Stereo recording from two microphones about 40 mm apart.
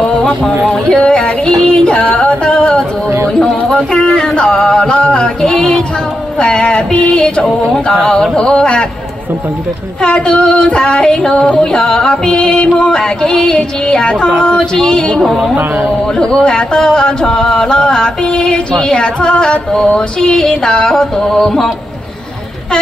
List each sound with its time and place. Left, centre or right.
0.8 s music: left
2.0 s a sound: left
7.4 s music: centre
8.0 s music: centre
10.0 s music: left
15.1 s a man's voice: centre
16.2 s music: left